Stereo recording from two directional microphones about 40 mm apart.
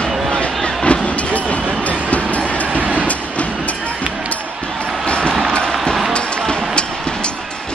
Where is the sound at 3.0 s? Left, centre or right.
Left.